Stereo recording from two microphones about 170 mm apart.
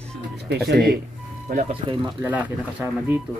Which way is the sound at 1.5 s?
40° right (ahead or behind).